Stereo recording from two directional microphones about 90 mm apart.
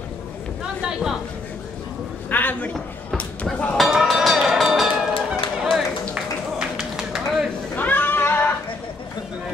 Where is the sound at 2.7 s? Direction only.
5° left (ahead or behind).